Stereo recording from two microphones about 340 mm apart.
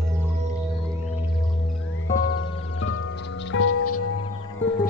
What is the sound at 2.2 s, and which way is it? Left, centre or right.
Music, left.